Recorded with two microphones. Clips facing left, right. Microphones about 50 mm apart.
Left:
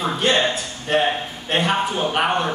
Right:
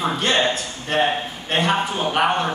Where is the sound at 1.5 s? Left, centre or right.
Centre.